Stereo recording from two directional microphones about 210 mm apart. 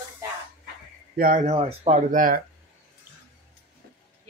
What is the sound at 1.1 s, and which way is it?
Speech, 40° right (ahead or behind).